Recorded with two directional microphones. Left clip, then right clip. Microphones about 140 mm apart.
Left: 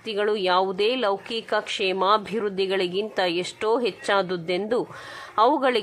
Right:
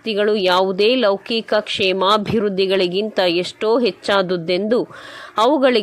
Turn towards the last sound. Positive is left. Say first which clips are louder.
# right 5 dB
turn(degrees=-25)  # may be behind; listen again after turning